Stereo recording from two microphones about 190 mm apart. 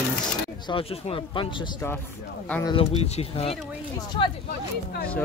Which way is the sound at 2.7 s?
30° left (ahead or behind).